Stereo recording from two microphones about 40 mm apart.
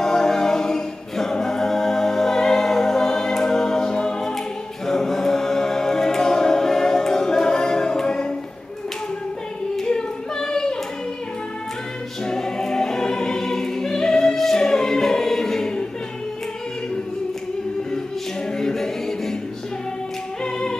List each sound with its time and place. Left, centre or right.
0.0 s a capella: centre
4.8 s choir: centre
9.8 s a sound: centre
12.3 s choir: centre
18.6 s a capella: centre